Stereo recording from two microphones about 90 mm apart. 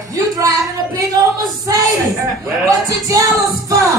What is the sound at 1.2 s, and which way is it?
Female singing, 45° right (ahead or behind).